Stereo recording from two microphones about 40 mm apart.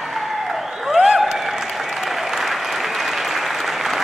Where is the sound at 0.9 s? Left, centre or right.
Centre.